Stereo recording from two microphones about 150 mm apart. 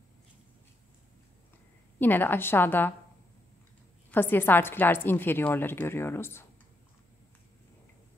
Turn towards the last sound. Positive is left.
turn(degrees=15)  # may be behind; listen again after turning